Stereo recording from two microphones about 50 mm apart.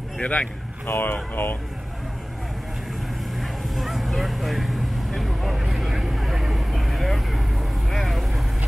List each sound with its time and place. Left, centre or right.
0.2 s speech: left
0.8 s speech: left
3.3 s vehicle: centre